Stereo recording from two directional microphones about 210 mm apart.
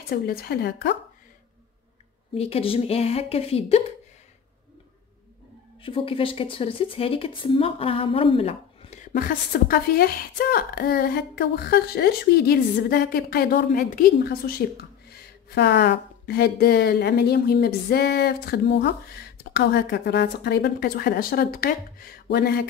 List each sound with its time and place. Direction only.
0.1 s speech: 45° left (ahead or behind)
2.3 s a woman's voice: 30° left (ahead or behind)
5.8 s speech: 25° left (ahead or behind); by 22.7 s 50° left (ahead or behind)